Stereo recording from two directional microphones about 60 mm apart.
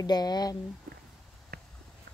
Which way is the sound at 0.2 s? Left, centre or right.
Left.